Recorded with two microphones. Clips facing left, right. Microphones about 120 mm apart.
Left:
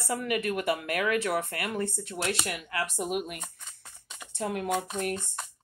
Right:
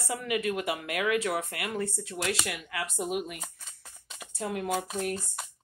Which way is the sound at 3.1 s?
55° left (ahead or behind).